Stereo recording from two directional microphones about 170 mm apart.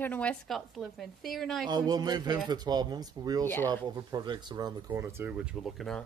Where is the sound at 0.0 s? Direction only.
10° left (ahead or behind).